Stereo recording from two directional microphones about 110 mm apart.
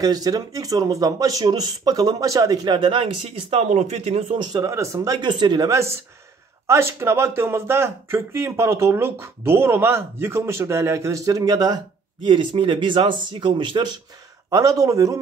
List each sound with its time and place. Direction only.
0.0 s speech: 35° right (ahead or behind); by 4.4 s 65° right (ahead or behind)
4.4 s speech: 40° right (ahead or behind)
4.6 s speech: 30° right (ahead or behind)
5.2 s speech: 45° right (ahead or behind)
5.7 s speech: 25° right (ahead or behind); by 13.9 s 45° right (ahead or behind)
14.5 s speech: 30° right (ahead or behind)